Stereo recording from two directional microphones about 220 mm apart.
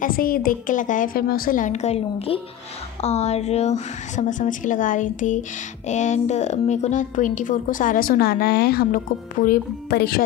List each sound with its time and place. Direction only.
0.0 s a woman's voice: 40° left (ahead or behind)